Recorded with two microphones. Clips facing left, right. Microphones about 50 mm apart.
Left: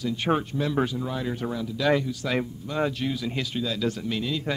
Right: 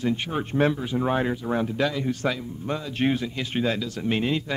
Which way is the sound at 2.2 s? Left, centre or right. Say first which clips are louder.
Right 1 dB; right.